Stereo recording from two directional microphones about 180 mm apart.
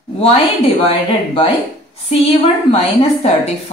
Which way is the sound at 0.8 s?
35° left (ahead or behind).